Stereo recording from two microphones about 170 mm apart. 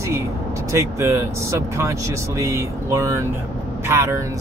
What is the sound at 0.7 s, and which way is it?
Speech, 15° right (ahead or behind).